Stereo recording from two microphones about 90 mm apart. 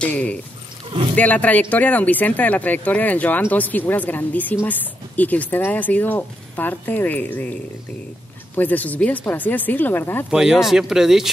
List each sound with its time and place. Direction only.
0.0 s speech: 15° left (ahead or behind)
8.5 s speech: 20° left (ahead or behind)
10.3 s speech: 5° right (ahead or behind)